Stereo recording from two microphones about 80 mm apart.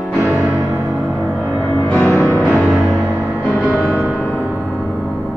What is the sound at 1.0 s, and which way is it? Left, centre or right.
Music, centre.